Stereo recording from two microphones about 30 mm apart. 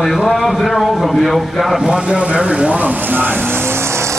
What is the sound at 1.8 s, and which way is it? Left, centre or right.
Speech, centre.